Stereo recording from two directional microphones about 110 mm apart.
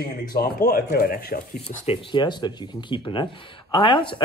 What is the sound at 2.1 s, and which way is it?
A man's voice, 45° left (ahead or behind).